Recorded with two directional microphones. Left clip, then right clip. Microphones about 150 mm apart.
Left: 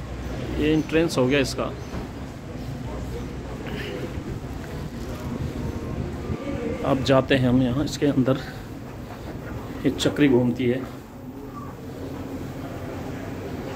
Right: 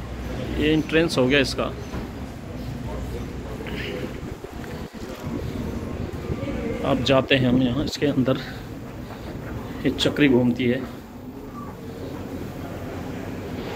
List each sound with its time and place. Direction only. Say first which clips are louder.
0.6 s speech: right 1 dB; 10° left (ahead or behind)
6.8 s speech: even; 40° left (ahead or behind)
9.8 s speech: right 1 dB; 30° left (ahead or behind)
10.1 s speech: right 1 dB; 15° left (ahead or behind)